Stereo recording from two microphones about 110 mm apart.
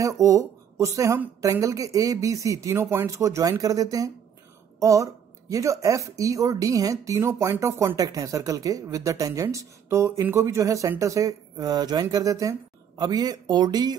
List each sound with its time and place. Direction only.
0.0 s speech: 30° right (ahead or behind)